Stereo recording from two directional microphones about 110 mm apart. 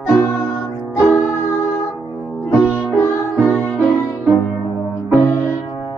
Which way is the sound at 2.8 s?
20° left (ahead or behind).